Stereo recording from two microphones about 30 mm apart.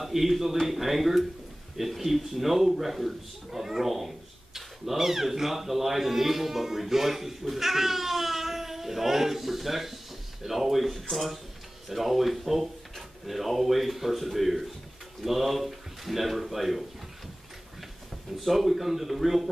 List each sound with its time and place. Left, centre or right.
0.0 s speech: centre
18.4 s speech: centre